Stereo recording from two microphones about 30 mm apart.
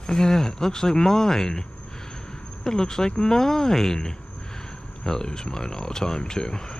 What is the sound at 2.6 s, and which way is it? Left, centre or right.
Speech, left.